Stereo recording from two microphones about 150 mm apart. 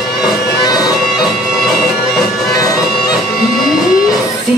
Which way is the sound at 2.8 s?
Centre (ahead or behind).